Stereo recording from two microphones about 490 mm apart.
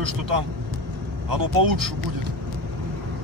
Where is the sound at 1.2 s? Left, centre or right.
Right.